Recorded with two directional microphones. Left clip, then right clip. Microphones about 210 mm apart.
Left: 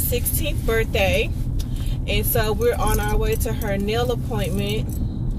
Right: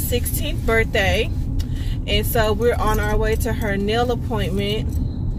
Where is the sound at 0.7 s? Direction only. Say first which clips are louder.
Right 2 dB; 20° right (ahead or behind).